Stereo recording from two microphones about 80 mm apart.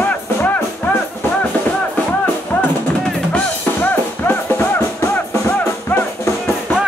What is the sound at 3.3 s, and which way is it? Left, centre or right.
Music, left.